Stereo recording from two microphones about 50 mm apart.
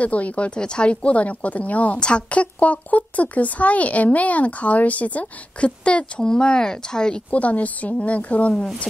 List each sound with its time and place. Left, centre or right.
0.0 s a woman's voice: left
7.2 s a woman's voice: left